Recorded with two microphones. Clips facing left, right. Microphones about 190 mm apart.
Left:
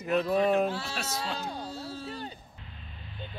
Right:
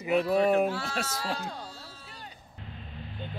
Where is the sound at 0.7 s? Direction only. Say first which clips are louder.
Right 1 dB; 25° left (ahead or behind).